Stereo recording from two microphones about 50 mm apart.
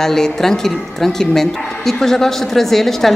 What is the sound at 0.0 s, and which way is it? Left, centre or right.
A woman's voice, centre.